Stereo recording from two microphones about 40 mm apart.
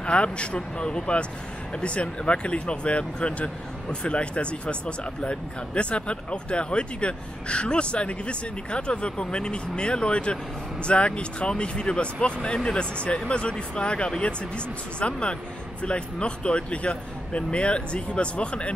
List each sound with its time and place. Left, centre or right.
0.0 s speech: left